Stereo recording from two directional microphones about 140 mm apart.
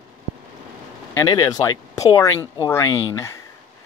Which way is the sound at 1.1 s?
25° left (ahead or behind).